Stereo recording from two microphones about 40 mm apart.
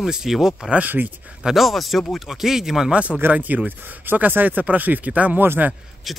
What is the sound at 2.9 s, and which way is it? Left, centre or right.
Speech, right.